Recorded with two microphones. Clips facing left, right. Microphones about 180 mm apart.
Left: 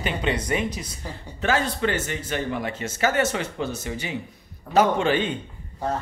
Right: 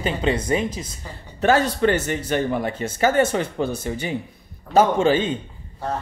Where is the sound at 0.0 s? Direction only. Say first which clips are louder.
Right 4 dB; 30° right (ahead or behind).